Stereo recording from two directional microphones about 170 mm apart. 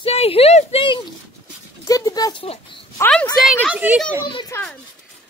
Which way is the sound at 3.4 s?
5° right (ahead or behind).